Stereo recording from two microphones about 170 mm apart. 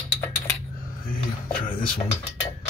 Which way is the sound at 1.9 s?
15° left (ahead or behind).